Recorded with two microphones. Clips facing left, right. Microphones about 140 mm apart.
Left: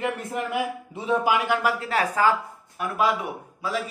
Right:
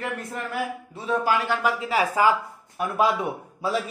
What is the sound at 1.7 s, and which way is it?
Speech, 5° right (ahead or behind).